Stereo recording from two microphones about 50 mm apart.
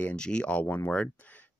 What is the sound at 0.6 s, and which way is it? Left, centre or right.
Speech, left.